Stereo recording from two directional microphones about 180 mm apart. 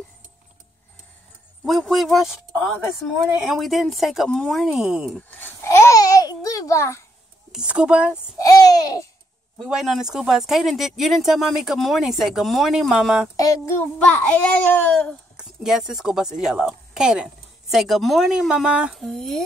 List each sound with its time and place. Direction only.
1.6 s speech: centre (ahead or behind)
5.4 s a child's voice: 15° left (ahead or behind)
7.5 s speech: 5° right (ahead or behind)
8.1 s a child's voice: 20° left (ahead or behind)
9.6 s speech: centre (ahead or behind)
13.9 s a child's voice: 10° left (ahead or behind)
15.3 s speech: 5° right (ahead or behind)